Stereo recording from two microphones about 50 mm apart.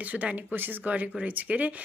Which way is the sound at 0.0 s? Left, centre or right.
Right.